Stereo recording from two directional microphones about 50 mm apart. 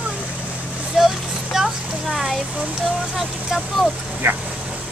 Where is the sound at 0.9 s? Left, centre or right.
Centre.